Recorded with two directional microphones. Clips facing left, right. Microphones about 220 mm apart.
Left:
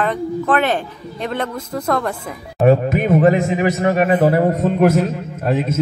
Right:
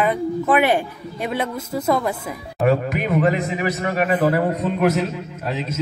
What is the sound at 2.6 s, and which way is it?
A man's voice, 30° left (ahead or behind).